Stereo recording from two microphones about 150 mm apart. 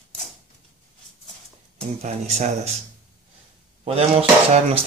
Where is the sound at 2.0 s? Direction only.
45° right (ahead or behind).